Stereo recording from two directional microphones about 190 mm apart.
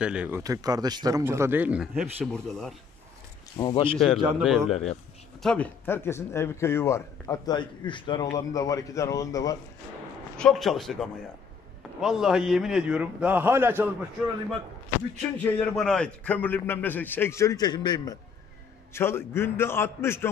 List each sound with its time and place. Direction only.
0.0 s a man's voice: 5° right (ahead or behind)
0.4 s speech: 20° right (ahead or behind); by 2.7 s 5° left (ahead or behind)
3.5 s speech: 25° left (ahead or behind)
4.4 s a man's voice: centre (ahead or behind); by 9.6 s 20° left (ahead or behind)
10.3 s a man's voice: 5° left (ahead or behind)
15.3 s a man's voice: 5° left (ahead or behind)